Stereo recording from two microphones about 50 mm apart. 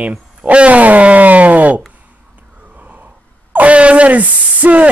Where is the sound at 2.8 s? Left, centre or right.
Right.